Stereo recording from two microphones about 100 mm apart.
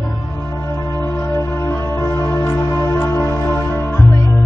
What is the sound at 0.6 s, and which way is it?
Music, 30° left (ahead or behind).